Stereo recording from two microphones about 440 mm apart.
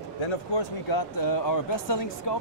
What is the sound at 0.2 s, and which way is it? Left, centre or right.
Speech, left.